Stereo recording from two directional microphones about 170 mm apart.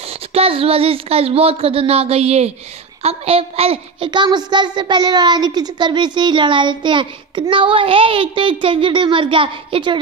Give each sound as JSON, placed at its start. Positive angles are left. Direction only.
{"t": 0.1, "sound": "a woman's voice", "side_deg": -35}